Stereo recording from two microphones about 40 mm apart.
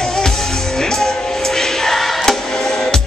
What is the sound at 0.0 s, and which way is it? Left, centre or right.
Music, centre.